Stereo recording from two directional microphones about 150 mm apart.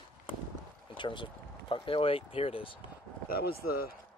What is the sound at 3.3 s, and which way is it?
Speech, 90° left.